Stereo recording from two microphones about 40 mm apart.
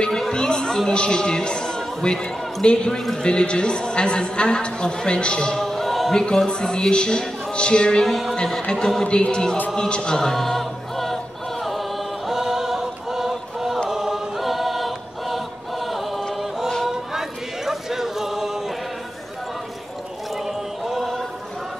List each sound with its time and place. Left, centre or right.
0.3 s chatter: centre
0.8 s a woman's voice: left
1.2 s music: centre
2.0 s a woman's voice: centre
5.6 s a sound: centre
6.1 s a woman's voice: centre
8.0 s speech: centre
9.0 s a woman's voice: left
10.3 s music: centre
12.3 s choir: centre
16.8 s a sound: centre
20.4 s a sound: centre